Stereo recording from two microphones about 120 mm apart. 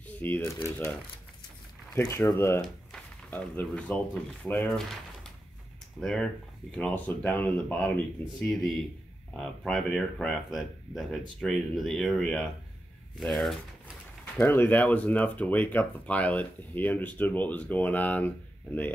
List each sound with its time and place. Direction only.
0.0 s speech: 15° left (ahead or behind)
2.0 s speech: 20° left (ahead or behind); by 13.6 s 5° left (ahead or behind)
14.4 s speech: 15° left (ahead or behind)